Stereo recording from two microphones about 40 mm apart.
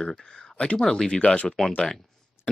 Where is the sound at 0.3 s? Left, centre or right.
Centre.